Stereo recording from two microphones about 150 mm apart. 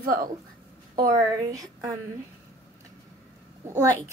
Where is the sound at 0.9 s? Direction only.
25° right (ahead or behind).